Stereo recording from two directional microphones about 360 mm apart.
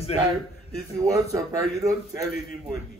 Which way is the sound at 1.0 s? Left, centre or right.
Centre.